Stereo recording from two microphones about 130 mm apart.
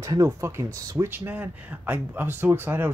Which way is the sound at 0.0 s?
25° right (ahead or behind).